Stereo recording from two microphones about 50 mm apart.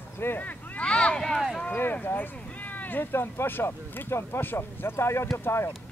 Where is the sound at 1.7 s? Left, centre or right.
Left.